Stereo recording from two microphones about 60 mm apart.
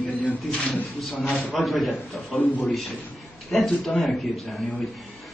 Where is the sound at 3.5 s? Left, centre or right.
Centre.